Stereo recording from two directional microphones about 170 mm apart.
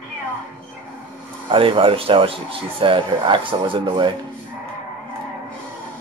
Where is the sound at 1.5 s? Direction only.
30° right (ahead or behind).